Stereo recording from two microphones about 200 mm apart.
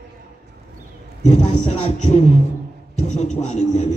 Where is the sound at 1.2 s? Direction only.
35° left (ahead or behind).